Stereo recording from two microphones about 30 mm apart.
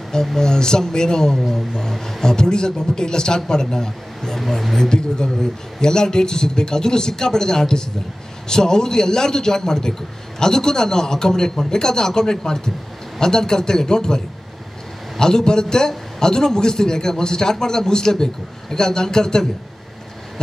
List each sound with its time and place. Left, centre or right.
0.4 s a man's voice: left
2.3 s a man's voice: left
4.4 s speech: centre
4.7 s a man's voice: left